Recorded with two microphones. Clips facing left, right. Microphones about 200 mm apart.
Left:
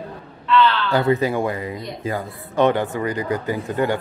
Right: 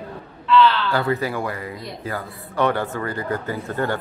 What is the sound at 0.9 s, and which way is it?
A man's voice, 20° left (ahead or behind).